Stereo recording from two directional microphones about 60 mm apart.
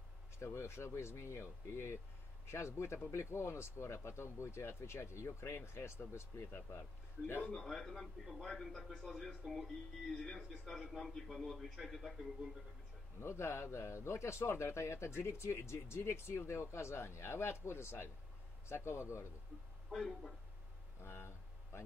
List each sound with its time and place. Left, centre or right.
0.4 s speech: left
7.5 s a man's voice: centre
13.2 s speech: left
19.9 s a man's voice: centre
21.0 s speech: left